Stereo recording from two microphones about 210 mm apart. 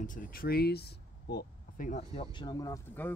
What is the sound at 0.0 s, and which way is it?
Speech, 40° left (ahead or behind).